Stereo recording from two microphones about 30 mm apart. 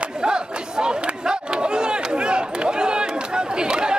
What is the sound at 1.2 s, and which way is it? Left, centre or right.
Crowd, right.